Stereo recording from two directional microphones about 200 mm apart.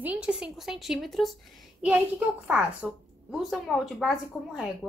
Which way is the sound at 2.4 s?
5° right (ahead or behind).